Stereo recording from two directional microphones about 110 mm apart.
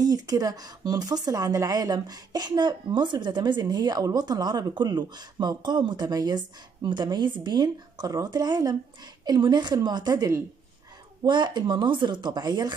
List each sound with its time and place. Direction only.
0.0 s a woman's voice: 35° right (ahead or behind)